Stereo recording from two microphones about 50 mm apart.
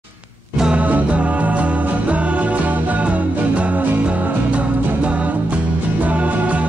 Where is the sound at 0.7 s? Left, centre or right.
Right.